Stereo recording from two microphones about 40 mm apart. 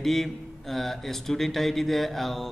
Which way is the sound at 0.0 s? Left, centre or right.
Centre.